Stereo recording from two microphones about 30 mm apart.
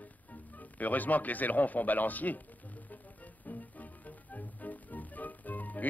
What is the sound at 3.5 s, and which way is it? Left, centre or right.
Music, left.